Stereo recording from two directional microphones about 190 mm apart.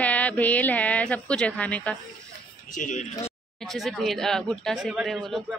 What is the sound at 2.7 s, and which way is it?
Speech, 40° left (ahead or behind).